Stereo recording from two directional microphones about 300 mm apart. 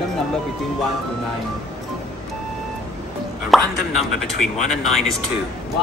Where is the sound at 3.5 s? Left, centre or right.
Centre.